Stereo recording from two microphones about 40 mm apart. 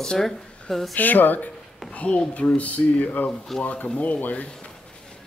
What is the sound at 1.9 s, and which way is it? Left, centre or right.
Speech, left.